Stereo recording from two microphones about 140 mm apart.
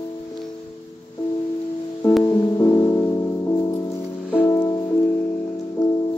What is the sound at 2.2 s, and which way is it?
Music, 20° left (ahead or behind).